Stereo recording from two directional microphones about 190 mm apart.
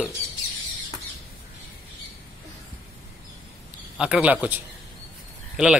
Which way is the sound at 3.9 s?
5° right (ahead or behind).